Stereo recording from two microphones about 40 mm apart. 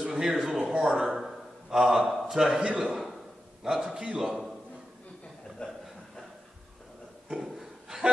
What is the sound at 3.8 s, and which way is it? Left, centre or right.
Speech, centre.